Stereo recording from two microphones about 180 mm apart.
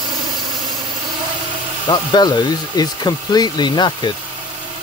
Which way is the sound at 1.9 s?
25° left (ahead or behind).